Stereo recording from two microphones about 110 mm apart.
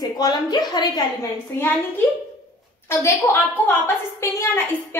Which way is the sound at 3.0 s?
20° left (ahead or behind).